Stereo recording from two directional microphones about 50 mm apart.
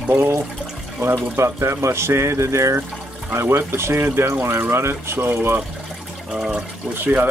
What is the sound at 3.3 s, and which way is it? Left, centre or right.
Speech, right.